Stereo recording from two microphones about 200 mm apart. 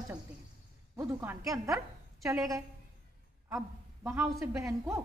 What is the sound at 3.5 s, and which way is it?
Speech, 10° right (ahead or behind).